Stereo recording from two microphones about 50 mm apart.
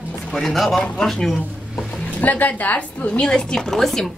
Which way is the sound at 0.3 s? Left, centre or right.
Centre.